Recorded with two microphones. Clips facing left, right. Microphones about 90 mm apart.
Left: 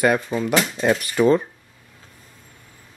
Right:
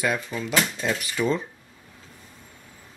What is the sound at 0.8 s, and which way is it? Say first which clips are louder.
Speech: left 8 dB; 55° left (ahead or behind).